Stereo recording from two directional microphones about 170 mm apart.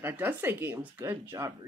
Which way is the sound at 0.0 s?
10° right (ahead or behind).